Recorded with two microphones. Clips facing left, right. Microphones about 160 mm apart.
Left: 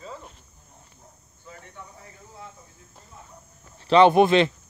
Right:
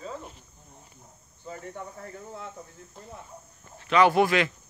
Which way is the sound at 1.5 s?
45° right (ahead or behind).